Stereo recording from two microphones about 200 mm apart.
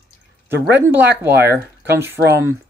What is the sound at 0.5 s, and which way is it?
Speech, 55° right (ahead or behind).